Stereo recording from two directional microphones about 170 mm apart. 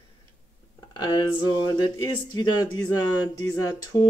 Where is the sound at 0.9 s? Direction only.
25° left (ahead or behind).